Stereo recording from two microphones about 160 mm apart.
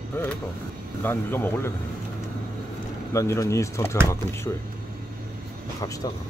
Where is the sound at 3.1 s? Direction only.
20° left (ahead or behind).